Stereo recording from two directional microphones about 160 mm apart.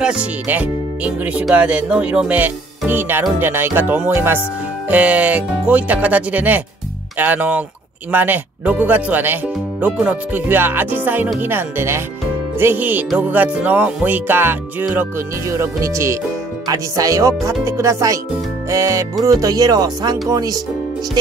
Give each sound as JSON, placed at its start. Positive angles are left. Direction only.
{"t": 0.0, "sound": "speech", "side_deg": -5}